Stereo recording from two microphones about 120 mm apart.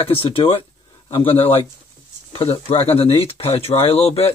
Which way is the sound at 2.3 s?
55° left (ahead or behind).